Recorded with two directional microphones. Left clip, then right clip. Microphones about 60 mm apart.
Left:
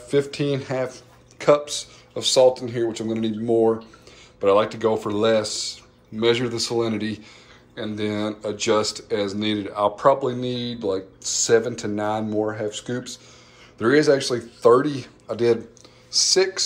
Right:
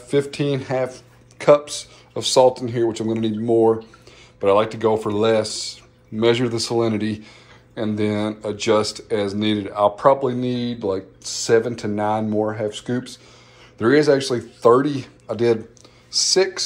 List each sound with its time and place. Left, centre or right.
0.1 s a man's voice: left
6.1 s a man's voice: centre
7.7 s speech: centre
8.1 s speech: left
11.6 s speech: left